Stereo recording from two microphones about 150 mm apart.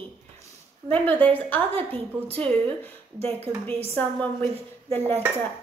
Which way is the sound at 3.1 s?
40° right (ahead or behind).